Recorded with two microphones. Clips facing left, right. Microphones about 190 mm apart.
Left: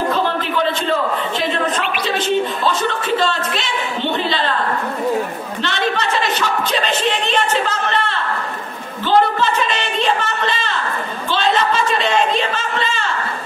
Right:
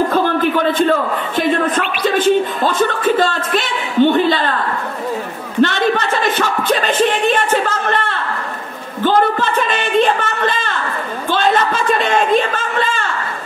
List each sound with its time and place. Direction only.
0.1 s a man's voice: 50° right (ahead or behind)
5.6 s a man's voice: 50° right (ahead or behind)
9.0 s a sound: 50° right (ahead or behind)